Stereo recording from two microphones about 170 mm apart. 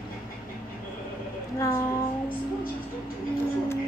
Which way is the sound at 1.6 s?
20° left (ahead or behind).